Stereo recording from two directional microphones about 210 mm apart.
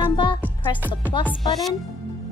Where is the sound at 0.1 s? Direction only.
20° left (ahead or behind).